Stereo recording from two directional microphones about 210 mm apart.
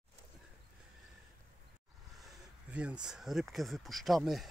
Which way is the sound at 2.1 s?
5° right (ahead or behind).